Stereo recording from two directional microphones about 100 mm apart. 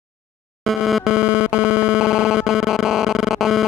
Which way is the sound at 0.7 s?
Centre (ahead or behind).